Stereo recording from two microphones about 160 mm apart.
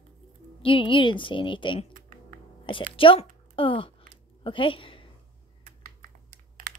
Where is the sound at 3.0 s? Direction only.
35° left (ahead or behind).